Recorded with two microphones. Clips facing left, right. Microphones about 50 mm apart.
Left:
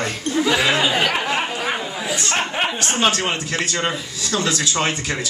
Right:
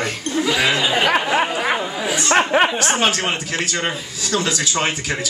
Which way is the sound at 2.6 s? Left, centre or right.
Centre.